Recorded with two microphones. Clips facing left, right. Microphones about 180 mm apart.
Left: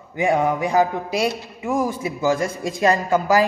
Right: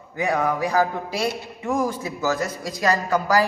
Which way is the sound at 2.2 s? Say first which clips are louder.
Left 4 dB; 25° left (ahead or behind).